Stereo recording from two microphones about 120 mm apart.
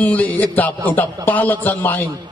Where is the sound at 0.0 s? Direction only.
15° left (ahead or behind).